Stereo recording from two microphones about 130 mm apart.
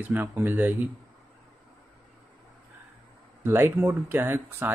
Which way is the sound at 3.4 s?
20° right (ahead or behind).